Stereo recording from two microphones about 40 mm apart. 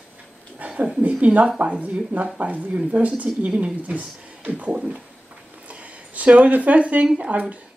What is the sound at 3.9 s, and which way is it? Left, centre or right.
Speech, right.